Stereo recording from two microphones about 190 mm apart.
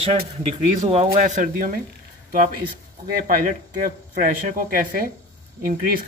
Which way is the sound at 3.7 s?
45° right (ahead or behind).